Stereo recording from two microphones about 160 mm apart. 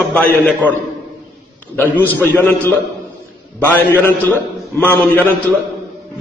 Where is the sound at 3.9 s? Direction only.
15° left (ahead or behind).